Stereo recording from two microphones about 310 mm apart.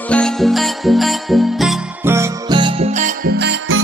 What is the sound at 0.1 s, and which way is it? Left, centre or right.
Music, centre.